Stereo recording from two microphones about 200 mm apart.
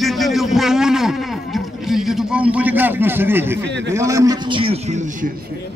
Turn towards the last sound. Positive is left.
turn(degrees=-35)  # may be behind; listen again after turning